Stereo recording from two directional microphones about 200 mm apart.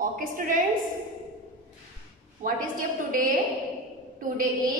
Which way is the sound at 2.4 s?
40° right (ahead or behind).